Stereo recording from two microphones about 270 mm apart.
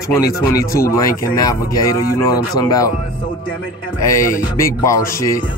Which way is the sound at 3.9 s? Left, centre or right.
Centre.